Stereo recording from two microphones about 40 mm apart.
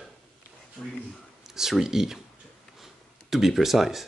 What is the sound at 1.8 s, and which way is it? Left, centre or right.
Speech, centre.